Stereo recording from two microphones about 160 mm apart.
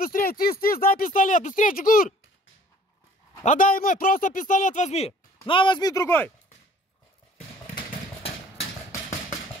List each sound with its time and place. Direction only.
0.0 s speech: 65° left (ahead or behind)
3.4 s speech: 60° left (ahead or behind); by 5.1 s 45° left (ahead or behind)
5.4 s speech: 30° left (ahead or behind); by 6.3 s 15° left (ahead or behind)